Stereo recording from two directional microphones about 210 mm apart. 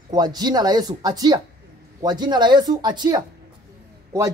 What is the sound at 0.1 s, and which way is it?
A woman's voice, 20° right (ahead or behind).